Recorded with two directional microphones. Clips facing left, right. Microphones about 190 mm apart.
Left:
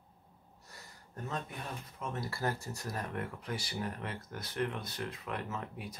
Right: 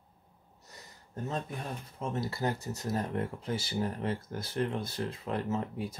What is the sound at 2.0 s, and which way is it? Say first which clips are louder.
Speech: right 5 dB; 25° right (ahead or behind).